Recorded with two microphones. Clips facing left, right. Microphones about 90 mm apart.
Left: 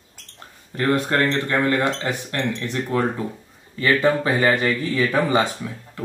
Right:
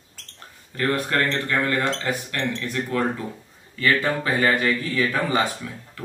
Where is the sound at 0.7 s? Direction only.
25° left (ahead or behind).